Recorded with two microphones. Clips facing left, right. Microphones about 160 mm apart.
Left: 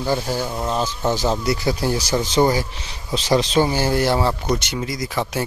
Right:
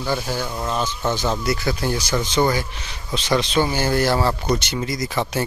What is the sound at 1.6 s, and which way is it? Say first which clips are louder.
Speech: left 2 dB; 30° left (ahead or behind).